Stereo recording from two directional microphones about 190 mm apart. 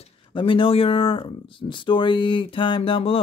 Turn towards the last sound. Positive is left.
turn(degrees=30)  # may be behind; listen again after turning